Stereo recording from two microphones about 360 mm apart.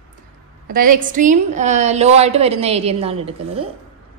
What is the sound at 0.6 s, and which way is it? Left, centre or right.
A woman's voice, right.